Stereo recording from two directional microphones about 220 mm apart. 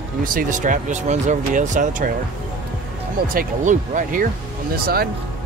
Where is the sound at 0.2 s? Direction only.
40° right (ahead or behind).